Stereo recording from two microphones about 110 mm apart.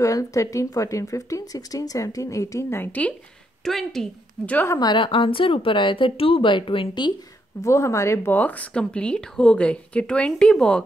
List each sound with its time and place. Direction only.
0.0 s a woman's voice: 30° left (ahead or behind); by 3.2 s 15° left (ahead or behind)
3.6 s a woman's voice: 5° left (ahead or behind)
4.7 s speech: 45° left (ahead or behind)
7.6 s speech: 25° left (ahead or behind); by 10.8 s 5° left (ahead or behind)